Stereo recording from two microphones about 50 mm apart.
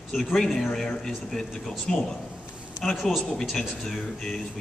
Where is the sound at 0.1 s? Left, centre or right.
Centre.